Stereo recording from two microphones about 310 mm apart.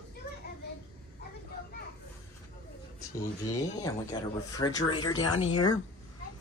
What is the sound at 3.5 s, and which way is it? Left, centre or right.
Speech, centre.